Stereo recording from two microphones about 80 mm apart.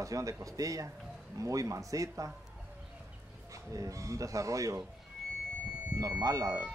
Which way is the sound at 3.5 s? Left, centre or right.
Right.